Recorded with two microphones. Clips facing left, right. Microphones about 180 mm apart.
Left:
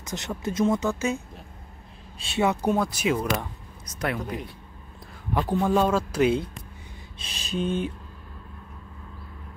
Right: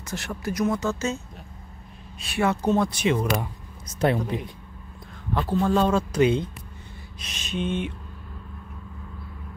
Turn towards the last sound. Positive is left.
turn(degrees=35)  # may be behind; listen again after turning